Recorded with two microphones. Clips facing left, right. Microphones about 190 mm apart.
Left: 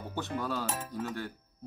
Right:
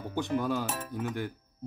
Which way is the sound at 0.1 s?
15° right (ahead or behind).